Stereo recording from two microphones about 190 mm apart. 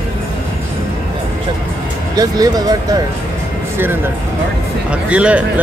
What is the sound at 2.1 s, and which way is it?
Speech, 20° right (ahead or behind).